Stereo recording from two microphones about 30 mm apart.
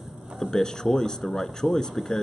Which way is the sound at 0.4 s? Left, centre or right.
Centre.